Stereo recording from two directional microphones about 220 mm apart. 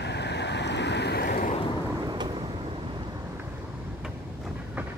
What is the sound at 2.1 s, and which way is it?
Vehicle, 20° right (ahead or behind).